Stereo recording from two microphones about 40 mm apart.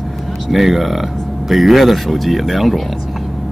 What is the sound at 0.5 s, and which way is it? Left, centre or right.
Speech, centre.